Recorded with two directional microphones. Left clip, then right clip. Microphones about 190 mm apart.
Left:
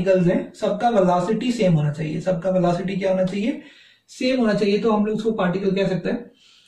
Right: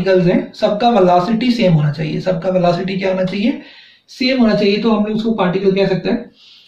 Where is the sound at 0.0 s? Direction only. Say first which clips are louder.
Right 5 dB; 15° right (ahead or behind).